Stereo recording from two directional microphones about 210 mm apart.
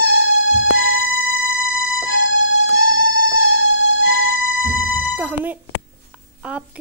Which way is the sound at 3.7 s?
65° left (ahead or behind).